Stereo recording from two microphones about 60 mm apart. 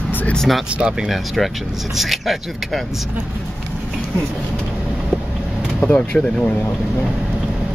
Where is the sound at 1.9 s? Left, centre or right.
Centre.